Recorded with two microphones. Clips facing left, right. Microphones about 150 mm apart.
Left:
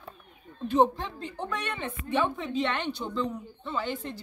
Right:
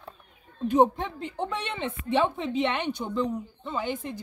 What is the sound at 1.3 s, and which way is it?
Speech, 25° right (ahead or behind).